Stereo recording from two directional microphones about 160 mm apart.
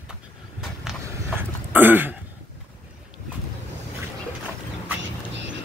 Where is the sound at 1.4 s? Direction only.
10° right (ahead or behind).